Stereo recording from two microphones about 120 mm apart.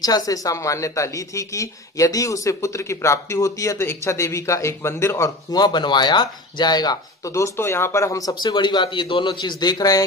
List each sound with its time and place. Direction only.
0.0 s a woman's voice: 30° left (ahead or behind)